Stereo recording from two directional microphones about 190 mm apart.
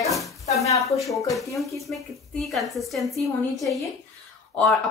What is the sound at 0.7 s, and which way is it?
Speech, 15° left (ahead or behind).